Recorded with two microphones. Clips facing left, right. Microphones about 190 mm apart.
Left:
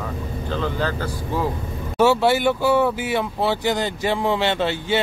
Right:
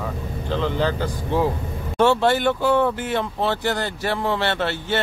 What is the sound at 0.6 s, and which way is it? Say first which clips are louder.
Speech: right 2 dB; 15° right (ahead or behind).